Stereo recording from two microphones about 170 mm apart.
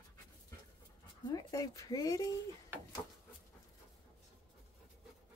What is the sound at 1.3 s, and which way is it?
Speech, 20° left (ahead or behind).